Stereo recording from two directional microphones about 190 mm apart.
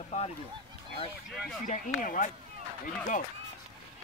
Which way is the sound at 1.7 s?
40° left (ahead or behind).